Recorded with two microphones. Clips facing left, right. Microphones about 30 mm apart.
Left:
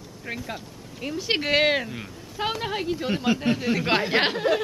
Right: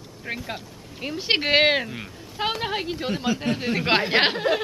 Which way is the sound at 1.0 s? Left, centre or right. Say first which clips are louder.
Right 2 dB; right.